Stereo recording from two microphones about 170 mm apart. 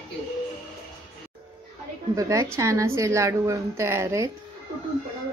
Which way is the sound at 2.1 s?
20° right (ahead or behind).